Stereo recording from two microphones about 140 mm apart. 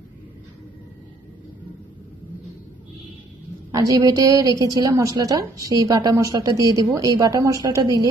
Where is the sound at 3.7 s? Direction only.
25° right (ahead or behind).